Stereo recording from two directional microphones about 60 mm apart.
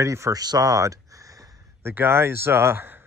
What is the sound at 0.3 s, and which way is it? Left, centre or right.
Speech, right.